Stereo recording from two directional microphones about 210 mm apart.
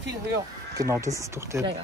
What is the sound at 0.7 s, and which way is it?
Speech, 15° right (ahead or behind).